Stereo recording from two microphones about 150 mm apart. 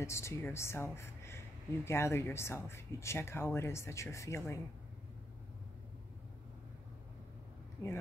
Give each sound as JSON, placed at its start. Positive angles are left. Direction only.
{"t": 0.0, "sound": "speech", "side_deg": 20}
{"t": 7.8, "sound": "speech", "side_deg": 20}